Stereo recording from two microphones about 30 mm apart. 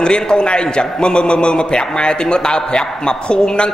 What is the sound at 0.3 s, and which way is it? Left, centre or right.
A man's voice, left.